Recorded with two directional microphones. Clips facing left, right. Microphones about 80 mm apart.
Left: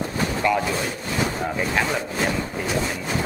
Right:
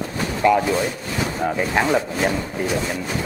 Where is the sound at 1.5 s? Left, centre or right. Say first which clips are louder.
Right 6 dB; centre.